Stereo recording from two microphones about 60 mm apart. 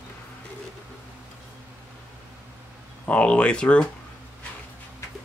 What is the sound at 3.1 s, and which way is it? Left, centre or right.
Speech, left.